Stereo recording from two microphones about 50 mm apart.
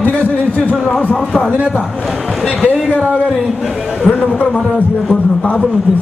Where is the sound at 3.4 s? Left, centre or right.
Centre.